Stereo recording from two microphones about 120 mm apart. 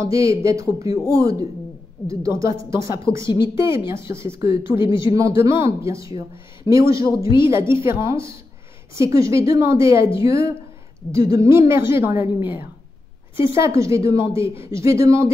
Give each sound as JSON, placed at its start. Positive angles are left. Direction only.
{"t": 0.0, "sound": "a woman's voice", "side_deg": -25}